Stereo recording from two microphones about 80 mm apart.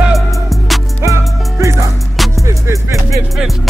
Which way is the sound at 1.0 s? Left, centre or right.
Right.